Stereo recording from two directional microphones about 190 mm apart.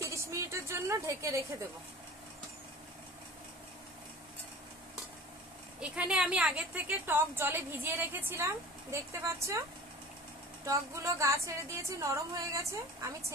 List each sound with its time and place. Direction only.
0.0 s a sound: 15° right (ahead or behind)
5.8 s a woman's voice: 5° right (ahead or behind)
10.6 s a woman's voice: 15° right (ahead or behind)